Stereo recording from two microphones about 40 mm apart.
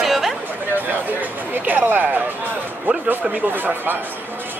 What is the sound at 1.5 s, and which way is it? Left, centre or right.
Speech, right.